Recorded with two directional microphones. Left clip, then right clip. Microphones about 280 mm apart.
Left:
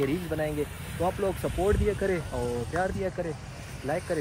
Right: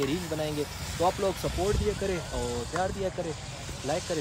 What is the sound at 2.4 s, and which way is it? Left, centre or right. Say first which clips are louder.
Speech: left 2 dB; right.